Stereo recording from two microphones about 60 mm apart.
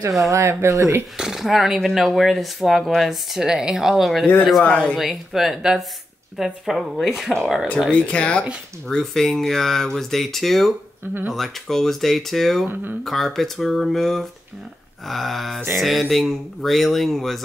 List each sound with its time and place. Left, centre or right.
0.3 s speech: right
1.1 s speech: centre
3.1 s speech: centre
7.9 s speech: centre
8.8 s speech: centre